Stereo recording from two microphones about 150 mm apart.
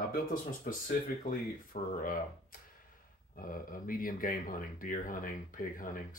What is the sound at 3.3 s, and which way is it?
Speech, 65° left (ahead or behind).